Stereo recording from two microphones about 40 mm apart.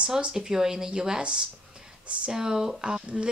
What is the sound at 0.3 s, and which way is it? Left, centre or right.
Speech, centre.